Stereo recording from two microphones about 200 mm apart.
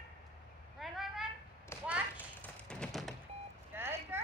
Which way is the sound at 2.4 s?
5° left (ahead or behind).